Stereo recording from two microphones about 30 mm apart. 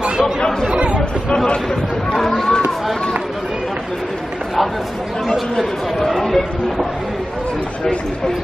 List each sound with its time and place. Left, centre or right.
0.7 s chatter: right
2.1 s a sound: centre
6.0 s chatter: centre